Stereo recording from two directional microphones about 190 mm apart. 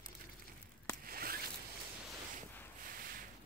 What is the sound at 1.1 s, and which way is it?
Zipper, 50° right (ahead or behind).